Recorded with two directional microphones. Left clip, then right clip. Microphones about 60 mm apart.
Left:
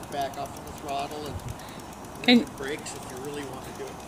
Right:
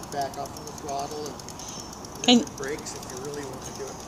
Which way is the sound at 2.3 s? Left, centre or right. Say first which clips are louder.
Right 1 dB; centre.